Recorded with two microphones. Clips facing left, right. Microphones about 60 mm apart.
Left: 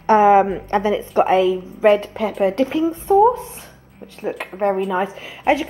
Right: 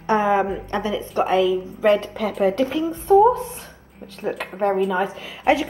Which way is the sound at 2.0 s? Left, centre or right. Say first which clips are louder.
Left 2 dB; centre.